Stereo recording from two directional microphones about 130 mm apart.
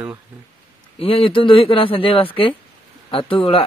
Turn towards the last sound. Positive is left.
turn(degrees=45)  # may be behind; listen again after turning